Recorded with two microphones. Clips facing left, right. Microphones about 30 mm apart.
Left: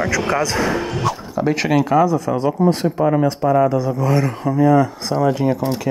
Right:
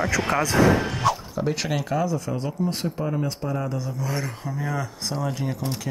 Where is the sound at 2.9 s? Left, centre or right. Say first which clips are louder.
Left 11 dB; left.